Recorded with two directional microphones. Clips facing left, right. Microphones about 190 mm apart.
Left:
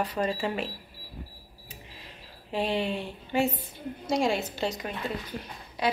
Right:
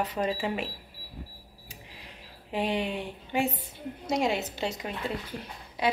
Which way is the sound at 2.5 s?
15° right (ahead or behind).